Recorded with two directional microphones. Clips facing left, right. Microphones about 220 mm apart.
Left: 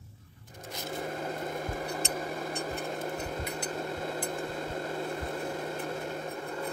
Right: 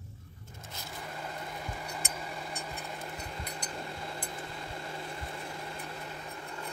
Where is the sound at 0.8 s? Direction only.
45° left (ahead or behind).